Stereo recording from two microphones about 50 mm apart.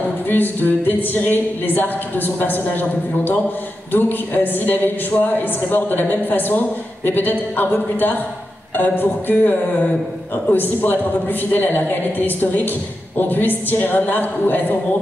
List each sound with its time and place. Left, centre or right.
0.3 s a man's voice: left
8.7 s a man's voice: left